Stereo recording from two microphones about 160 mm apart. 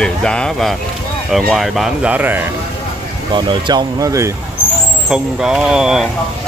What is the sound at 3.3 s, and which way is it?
Speech, 25° right (ahead or behind).